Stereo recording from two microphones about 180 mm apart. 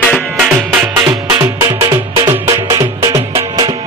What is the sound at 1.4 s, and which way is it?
Music, 20° right (ahead or behind).